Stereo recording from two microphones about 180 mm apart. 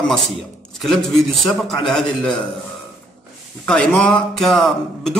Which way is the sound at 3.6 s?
5° left (ahead or behind).